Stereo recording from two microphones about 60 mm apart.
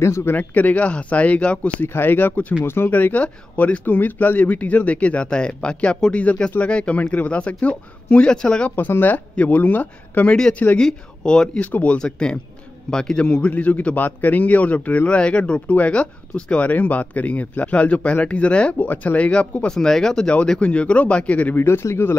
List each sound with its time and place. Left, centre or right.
0.0 s speech: left
0.4 s speech: left
1.8 s speech: left; by 8.7 s centre
8.7 s speech: left
10.8 s speech: centre
11.6 s speech: left
13.5 s speech: left
21.6 s speech: left